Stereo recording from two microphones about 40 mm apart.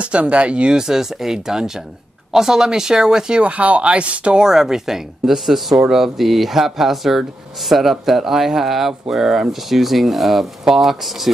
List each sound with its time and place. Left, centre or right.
0.0 s speech: right
0.7 s speech: centre
3.4 s speech: right
4.4 s speech: centre